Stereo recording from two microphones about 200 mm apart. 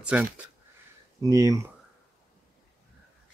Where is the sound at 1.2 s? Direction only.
15° right (ahead or behind).